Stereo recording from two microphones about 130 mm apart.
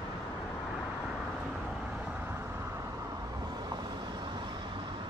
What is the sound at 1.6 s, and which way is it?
Vehicle, 10° right (ahead or behind).